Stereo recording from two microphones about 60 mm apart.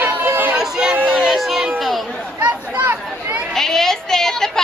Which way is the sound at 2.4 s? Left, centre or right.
Right.